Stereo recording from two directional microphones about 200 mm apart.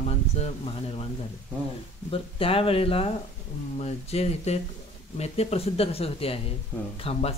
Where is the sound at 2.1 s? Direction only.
30° left (ahead or behind).